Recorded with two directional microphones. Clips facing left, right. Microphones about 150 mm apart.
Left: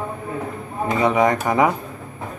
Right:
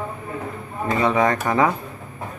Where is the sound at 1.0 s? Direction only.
15° left (ahead or behind).